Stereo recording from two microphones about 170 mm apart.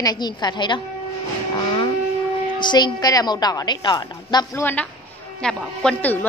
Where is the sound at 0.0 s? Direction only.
25° left (ahead or behind).